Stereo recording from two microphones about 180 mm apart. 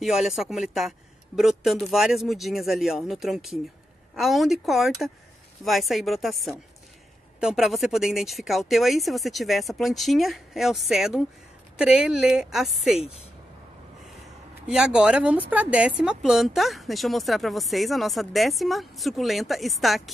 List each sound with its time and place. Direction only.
0.0 s speech: centre (ahead or behind)
13.0 s speech: 35° left (ahead or behind)
14.7 s speech: 5° right (ahead or behind)